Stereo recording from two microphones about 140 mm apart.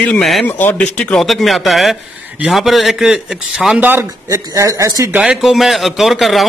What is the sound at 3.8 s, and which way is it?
Speech, 20° right (ahead or behind).